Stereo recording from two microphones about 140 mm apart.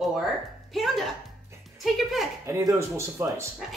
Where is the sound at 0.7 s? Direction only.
Centre (ahead or behind).